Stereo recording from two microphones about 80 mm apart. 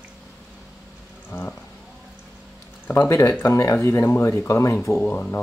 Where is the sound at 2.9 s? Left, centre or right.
Left.